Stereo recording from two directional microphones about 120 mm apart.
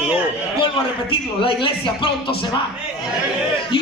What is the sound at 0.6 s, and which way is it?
A man's voice, 45° left (ahead or behind).